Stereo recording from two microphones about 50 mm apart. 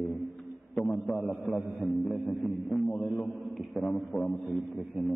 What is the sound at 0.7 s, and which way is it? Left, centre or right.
A man's voice, left.